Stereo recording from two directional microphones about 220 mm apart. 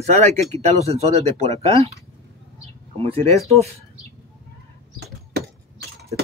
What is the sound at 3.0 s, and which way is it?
Speech, 25° right (ahead or behind).